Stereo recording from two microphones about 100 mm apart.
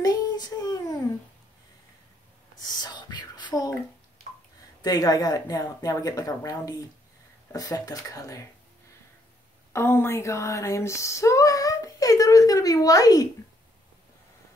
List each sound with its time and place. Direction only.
0.0 s child singing: 40° left (ahead or behind)
2.8 s a sound: 45° left (ahead or behind)
4.8 s speech: 40° left (ahead or behind)
9.7 s speech: 25° left (ahead or behind)